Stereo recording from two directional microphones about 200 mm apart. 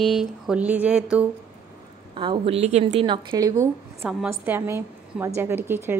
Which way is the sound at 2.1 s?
25° right (ahead or behind).